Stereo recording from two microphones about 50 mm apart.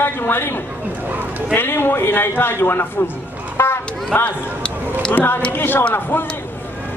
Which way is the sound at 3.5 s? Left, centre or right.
Left.